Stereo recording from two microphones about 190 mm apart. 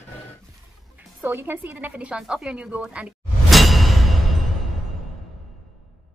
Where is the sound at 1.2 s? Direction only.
10° right (ahead or behind).